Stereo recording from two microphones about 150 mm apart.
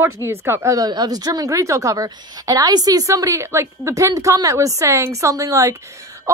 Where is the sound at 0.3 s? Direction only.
20° right (ahead or behind).